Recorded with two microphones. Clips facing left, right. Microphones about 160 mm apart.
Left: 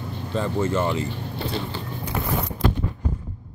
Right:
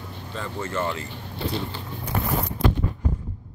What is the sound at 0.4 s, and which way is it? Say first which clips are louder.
Speech: left 6 dB; 20° left (ahead or behind).